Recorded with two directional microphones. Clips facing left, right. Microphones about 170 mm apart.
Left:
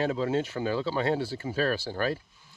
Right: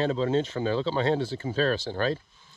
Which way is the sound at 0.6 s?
50° right (ahead or behind).